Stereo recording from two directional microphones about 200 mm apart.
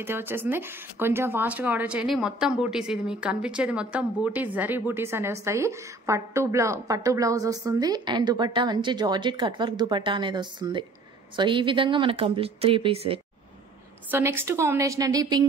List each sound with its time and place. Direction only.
0.0 s speech: 10° right (ahead or behind); by 13.2 s 30° right (ahead or behind)
14.1 s speech: 10° right (ahead or behind)